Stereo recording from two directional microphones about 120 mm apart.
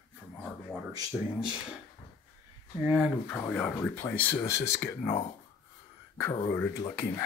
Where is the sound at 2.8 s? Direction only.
10° right (ahead or behind).